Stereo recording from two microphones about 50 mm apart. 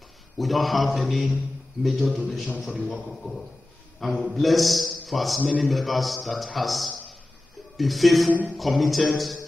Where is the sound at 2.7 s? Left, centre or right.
Centre.